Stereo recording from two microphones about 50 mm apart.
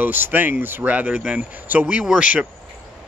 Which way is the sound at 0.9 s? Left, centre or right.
Right.